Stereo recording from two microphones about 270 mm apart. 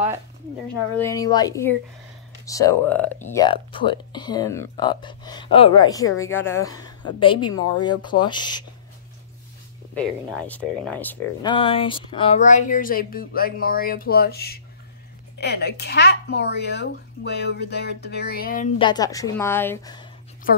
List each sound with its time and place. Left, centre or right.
0.9 s speech: centre
3.3 s speech: centre
7.5 s speech: left
8.0 s speech: centre
10.3 s speech: centre
11.5 s speech: centre
18.8 s speech: centre